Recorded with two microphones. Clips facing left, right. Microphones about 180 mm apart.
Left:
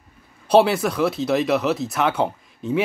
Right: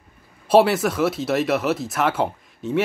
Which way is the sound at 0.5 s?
5° right (ahead or behind).